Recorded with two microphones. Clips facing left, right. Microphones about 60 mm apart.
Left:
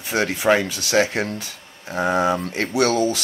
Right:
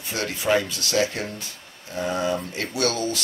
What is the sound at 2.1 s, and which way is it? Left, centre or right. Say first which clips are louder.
Speech: left 5 dB; left.